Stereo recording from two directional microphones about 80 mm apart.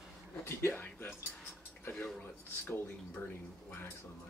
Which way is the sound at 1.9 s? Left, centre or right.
Centre.